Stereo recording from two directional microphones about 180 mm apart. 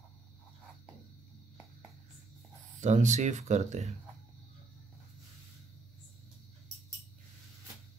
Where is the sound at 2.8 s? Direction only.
40° right (ahead or behind).